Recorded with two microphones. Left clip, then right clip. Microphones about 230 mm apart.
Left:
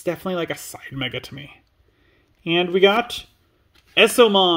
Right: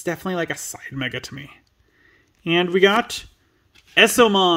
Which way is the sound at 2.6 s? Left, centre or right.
Right.